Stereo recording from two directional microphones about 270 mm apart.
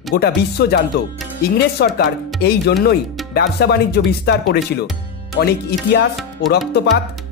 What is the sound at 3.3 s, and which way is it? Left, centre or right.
Speech, left.